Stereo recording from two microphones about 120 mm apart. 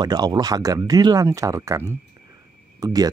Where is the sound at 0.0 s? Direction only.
35° right (ahead or behind).